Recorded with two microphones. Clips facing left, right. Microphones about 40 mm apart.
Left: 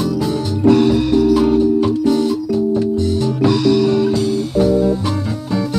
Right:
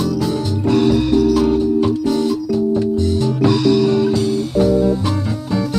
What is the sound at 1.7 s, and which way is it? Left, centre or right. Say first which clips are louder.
Organ: left 2 dB; centre.